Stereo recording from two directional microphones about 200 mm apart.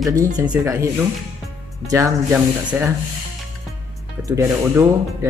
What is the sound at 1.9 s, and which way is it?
Speech, 15° right (ahead or behind).